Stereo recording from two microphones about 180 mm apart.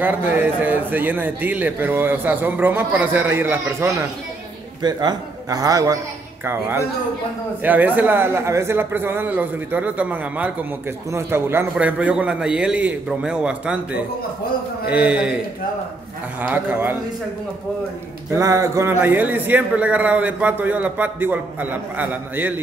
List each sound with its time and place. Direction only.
0.0 s a man's voice: 10° right (ahead or behind)
16.3 s a man's voice: 10° right (ahead or behind)
18.4 s a man's voice: 15° right (ahead or behind)